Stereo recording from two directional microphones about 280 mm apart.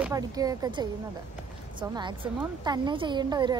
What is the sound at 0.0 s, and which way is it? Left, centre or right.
Speech, centre.